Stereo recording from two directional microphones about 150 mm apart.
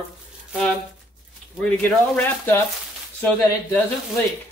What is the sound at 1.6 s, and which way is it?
Speech, 10° left (ahead or behind).